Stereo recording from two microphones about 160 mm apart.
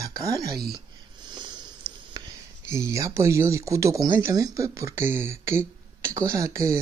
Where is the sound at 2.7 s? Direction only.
20° right (ahead or behind).